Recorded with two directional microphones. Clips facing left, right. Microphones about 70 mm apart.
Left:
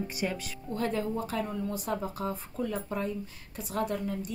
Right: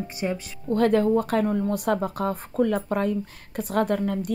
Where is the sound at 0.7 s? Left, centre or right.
Right.